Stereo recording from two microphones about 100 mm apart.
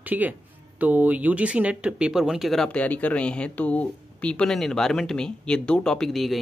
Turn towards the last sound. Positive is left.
turn(degrees=0)  # may be behind; listen again after turning